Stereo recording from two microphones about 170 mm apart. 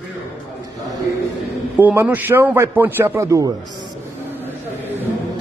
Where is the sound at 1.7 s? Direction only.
10° right (ahead or behind).